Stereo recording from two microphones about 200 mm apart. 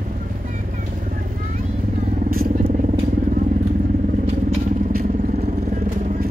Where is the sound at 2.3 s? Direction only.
45° right (ahead or behind).